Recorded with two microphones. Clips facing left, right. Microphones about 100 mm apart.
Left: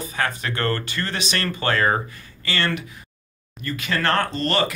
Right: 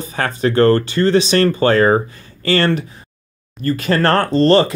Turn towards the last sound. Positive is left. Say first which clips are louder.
# right 10 dB
turn(degrees=-30)  # may be behind; listen again after turning